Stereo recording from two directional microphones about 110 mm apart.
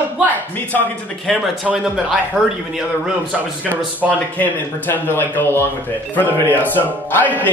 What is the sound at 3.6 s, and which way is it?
Speech, 15° right (ahead or behind).